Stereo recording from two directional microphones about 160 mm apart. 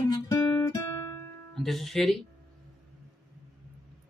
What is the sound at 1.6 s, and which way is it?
Music, centre (ahead or behind).